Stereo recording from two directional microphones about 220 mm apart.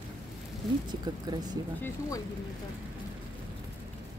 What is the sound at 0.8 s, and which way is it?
Speech, 20° right (ahead or behind).